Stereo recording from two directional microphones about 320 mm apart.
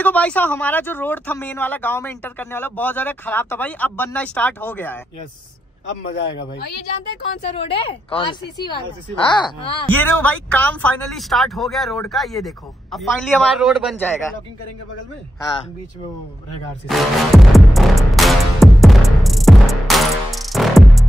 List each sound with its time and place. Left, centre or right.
0.0 s speech: centre
6.4 s speech: left
7.5 s a woman's voice: centre
16.8 s music: centre